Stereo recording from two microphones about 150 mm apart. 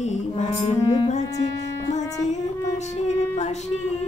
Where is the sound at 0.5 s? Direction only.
40° left (ahead or behind).